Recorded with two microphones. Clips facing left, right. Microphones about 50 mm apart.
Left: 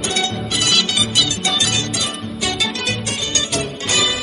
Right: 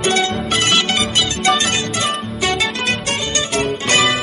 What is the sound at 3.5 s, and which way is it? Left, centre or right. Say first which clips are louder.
Music: right 6 dB; right.